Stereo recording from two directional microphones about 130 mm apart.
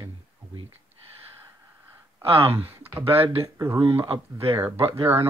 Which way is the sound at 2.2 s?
50° right (ahead or behind).